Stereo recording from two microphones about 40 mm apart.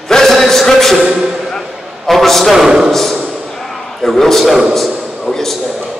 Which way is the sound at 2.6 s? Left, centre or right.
Centre.